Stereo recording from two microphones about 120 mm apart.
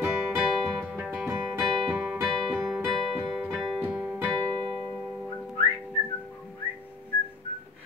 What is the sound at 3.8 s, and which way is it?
Music, 15° right (ahead or behind).